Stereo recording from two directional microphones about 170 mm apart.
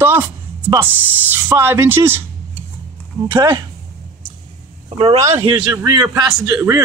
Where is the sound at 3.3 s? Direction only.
25° right (ahead or behind).